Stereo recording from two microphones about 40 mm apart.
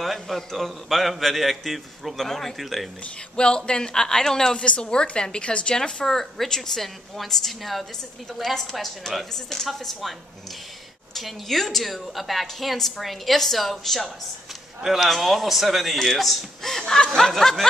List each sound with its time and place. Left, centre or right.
0.0 s a woman's voice: centre
2.6 s a woman's voice: centre
3.3 s a man's voice: left
4.6 s a man's voice: left
5.8 s a man's voice: centre
6.0 s a woman's voice: centre
11.1 s a woman's voice: centre
16.8 s a woman's voice: centre